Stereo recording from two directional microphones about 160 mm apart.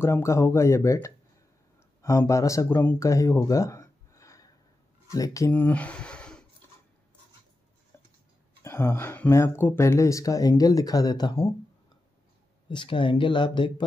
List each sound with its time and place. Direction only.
0.0 s speech: 15° left (ahead or behind)
5.5 s speech: 10° left (ahead or behind)
8.6 s speech: 15° left (ahead or behind)
12.6 s speech: 30° left (ahead or behind)